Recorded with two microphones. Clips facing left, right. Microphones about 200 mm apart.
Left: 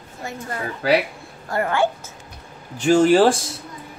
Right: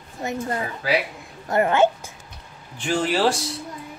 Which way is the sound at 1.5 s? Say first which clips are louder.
Right 3 dB; 20° right (ahead or behind).